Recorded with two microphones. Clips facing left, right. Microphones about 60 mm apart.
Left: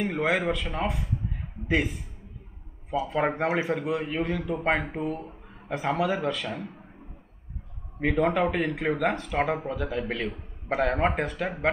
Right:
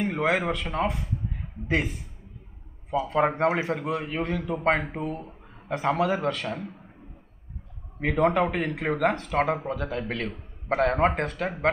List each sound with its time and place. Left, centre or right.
0.0 s speech: centre
3.1 s speech: centre
8.0 s speech: centre